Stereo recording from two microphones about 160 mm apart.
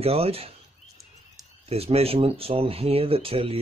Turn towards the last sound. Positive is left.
turn(degrees=-35)  # may be behind; listen again after turning